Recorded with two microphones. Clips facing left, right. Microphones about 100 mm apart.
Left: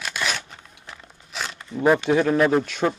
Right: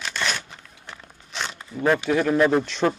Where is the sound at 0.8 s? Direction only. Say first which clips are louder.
Right 1 dB; centre (ahead or behind).